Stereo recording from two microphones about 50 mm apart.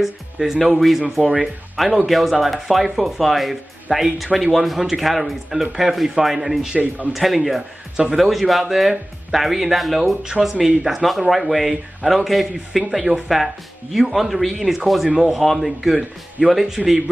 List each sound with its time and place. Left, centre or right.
0.0 s speech: centre
7.9 s speech: centre
8.2 s speech: centre